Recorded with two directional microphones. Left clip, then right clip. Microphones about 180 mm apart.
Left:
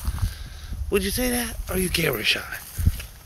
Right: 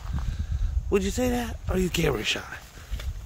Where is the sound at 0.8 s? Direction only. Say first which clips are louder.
Left 1 dB; 35° right (ahead or behind).